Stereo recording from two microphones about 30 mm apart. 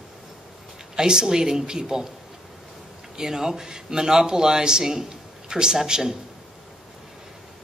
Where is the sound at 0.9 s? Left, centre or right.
Right.